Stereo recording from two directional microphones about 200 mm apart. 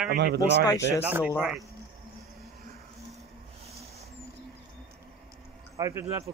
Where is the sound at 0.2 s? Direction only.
55° right (ahead or behind).